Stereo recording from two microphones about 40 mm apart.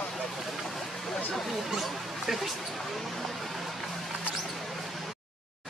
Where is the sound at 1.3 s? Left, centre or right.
Centre.